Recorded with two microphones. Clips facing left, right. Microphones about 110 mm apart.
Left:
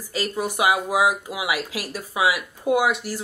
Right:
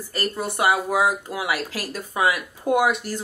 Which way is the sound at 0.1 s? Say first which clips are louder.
Left 2 dB; 10° left (ahead or behind).